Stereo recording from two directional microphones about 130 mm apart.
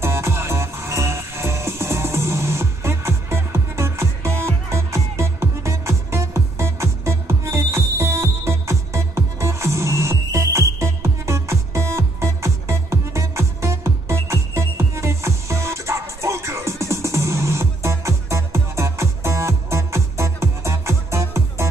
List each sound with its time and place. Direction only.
0.0 s music: 20° right (ahead or behind)